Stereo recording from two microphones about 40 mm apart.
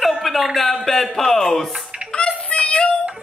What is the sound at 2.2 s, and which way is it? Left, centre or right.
Child singing, left.